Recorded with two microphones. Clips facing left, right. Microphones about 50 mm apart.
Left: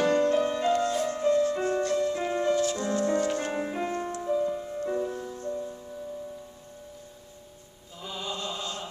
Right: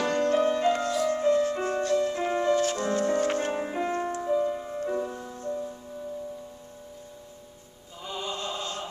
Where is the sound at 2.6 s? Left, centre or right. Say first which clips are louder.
Right 1 dB; right.